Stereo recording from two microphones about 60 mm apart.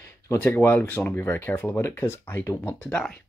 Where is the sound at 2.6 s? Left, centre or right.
Left.